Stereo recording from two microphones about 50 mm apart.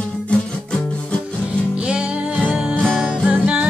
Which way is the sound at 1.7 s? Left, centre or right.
Right.